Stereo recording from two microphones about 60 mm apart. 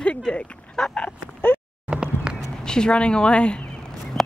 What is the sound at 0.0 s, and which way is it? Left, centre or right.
Dog, centre.